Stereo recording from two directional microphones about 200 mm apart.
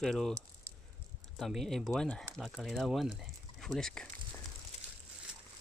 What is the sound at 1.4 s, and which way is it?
Speech, centre (ahead or behind).